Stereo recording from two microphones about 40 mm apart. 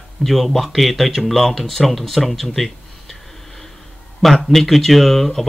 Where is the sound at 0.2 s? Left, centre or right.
Centre.